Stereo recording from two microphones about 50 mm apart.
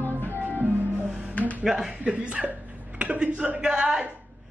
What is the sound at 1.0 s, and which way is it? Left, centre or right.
Music, centre.